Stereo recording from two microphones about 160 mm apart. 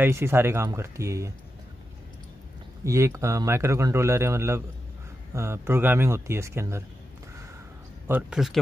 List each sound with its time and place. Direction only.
0.0 s a man's voice: 15° right (ahead or behind)
2.8 s a man's voice: 20° right (ahead or behind)
8.1 s speech: 5° right (ahead or behind)